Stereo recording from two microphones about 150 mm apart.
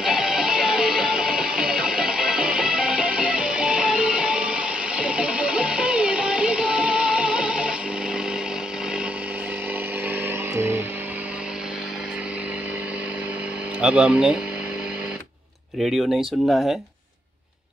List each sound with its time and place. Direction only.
0.0 s music: 5° right (ahead or behind)
10.5 s music: 15° right (ahead or behind)
13.7 s speech: 5° right (ahead or behind)
15.8 s speech: centre (ahead or behind)